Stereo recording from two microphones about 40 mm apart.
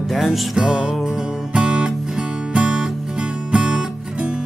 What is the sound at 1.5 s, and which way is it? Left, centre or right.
Music, right.